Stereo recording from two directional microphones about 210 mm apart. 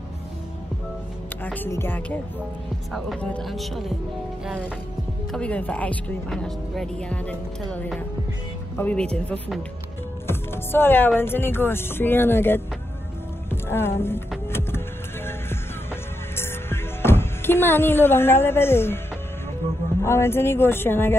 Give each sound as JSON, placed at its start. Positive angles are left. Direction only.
{"t": 1.4, "sound": "speech", "side_deg": 10}
{"t": 5.3, "sound": "speech", "side_deg": 5}
{"t": 15.2, "sound": "music", "side_deg": 10}
{"t": 20.0, "sound": "speech", "side_deg": 10}